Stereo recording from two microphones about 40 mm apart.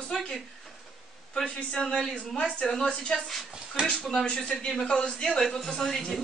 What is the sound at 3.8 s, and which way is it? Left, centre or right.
Speech, right.